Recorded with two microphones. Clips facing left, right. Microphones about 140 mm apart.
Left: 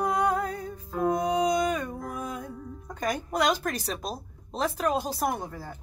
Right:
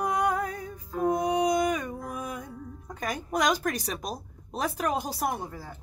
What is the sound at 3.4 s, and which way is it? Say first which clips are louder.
A woman's voice: left 1 dB; 15° right (ahead or behind).